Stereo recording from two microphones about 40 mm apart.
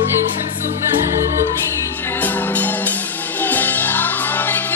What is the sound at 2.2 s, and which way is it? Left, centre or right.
Music, left.